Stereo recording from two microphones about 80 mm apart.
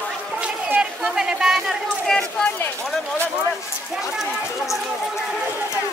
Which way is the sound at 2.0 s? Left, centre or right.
Centre.